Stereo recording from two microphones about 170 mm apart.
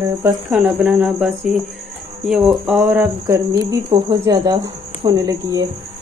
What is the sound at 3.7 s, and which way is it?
Speech, 20° right (ahead or behind).